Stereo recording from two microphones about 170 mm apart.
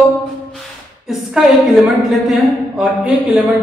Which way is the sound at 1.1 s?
5° right (ahead or behind).